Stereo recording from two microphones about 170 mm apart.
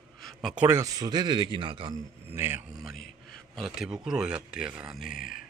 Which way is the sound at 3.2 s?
Centre (ahead or behind).